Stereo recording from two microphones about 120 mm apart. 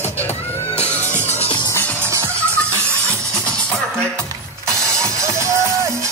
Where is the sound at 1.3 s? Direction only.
60° left (ahead or behind).